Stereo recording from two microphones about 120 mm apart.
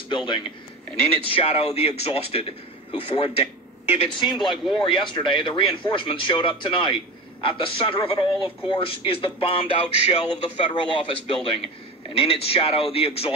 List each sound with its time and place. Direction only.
0.1 s a man's voice: 45° left (ahead or behind)
4.0 s a man's voice: 45° left (ahead or behind)
10.3 s a man's voice: 45° left (ahead or behind)